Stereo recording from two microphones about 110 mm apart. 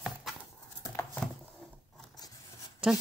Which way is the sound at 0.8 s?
25° left (ahead or behind).